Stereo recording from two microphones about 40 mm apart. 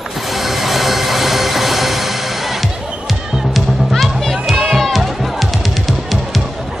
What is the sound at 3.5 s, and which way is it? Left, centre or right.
Music, centre.